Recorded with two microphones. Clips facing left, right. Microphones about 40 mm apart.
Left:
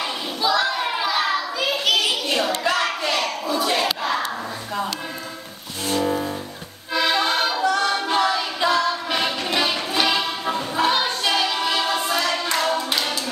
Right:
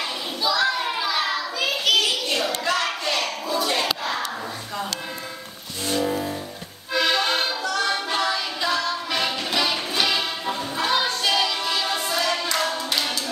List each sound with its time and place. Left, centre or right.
0.4 s child singing: centre
1.9 s a sound: centre
2.6 s battle cry: centre
6.0 s music: centre
6.9 s accordion: centre
7.3 s music: left
8.5 s singing: left
9.2 s train: left
10.0 s music: left
11.7 s hands: left